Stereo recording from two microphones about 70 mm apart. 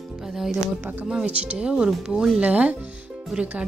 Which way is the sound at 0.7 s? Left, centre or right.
Right.